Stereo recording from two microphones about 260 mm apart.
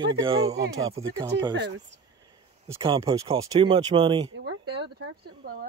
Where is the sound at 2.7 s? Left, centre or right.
Centre.